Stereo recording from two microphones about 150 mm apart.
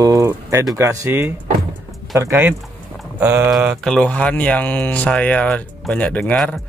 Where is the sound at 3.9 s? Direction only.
5° left (ahead or behind).